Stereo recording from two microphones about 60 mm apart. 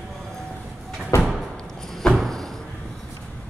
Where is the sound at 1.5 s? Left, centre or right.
Centre.